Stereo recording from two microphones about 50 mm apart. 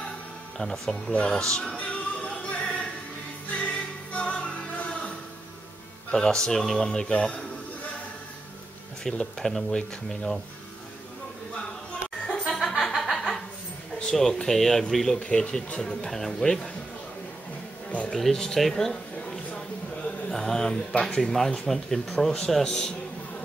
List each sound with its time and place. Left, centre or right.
0.6 s speech: centre
1.1 s speech: left
1.8 s music: left
6.1 s speech: centre
9.1 s speech: centre
11.5 s a sound: centre
12.4 s chuckle: centre
14.1 s speech: centre
15.1 s speech: left
18.1 s speech: centre